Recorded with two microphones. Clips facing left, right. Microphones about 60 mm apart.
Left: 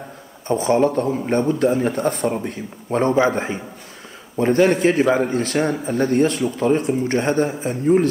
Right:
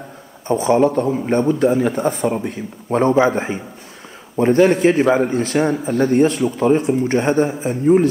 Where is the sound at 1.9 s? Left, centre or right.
Centre.